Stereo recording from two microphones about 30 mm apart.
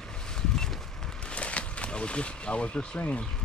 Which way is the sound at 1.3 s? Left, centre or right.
Left.